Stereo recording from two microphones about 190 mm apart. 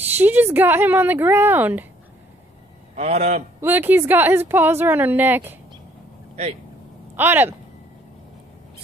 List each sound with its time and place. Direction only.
0.2 s speech: 10° right (ahead or behind)
3.0 s a man's voice: 35° right (ahead or behind)
3.6 s speech: 10° right (ahead or behind)
7.2 s speech: 10° right (ahead or behind)